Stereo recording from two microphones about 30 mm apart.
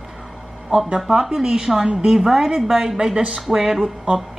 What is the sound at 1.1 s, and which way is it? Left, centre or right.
A woman's voice, right.